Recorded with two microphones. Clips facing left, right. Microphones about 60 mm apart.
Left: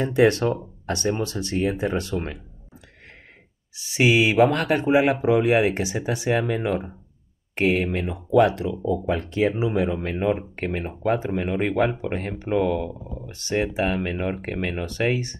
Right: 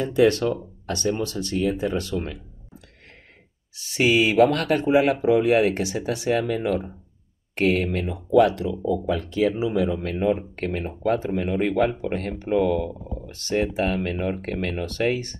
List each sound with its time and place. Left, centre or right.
0.0 s speech: left
3.7 s speech: centre